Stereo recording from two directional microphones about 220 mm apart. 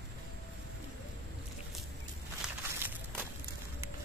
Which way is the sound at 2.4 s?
5° right (ahead or behind).